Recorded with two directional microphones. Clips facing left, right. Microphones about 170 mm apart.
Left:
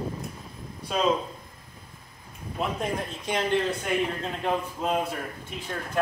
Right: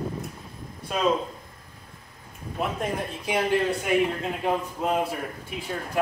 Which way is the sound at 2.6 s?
5° right (ahead or behind).